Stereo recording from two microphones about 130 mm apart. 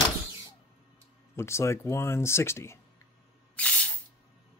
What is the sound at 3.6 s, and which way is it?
Spray, 10° left (ahead or behind).